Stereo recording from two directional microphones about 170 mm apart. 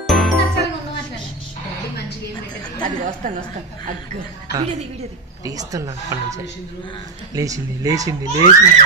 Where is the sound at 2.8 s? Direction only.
50° right (ahead or behind).